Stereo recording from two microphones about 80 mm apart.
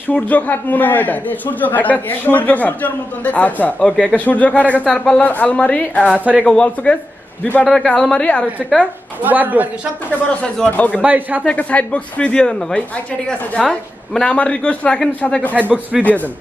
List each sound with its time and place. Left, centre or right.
0.1 s a man's voice: left
6.0 s a woman's voice: centre
6.4 s speech: centre
8.7 s a woman's voice: right
10.4 s speech: centre
11.0 s a woman's voice: centre
11.4 s speech: centre
16.0 s a man's voice: left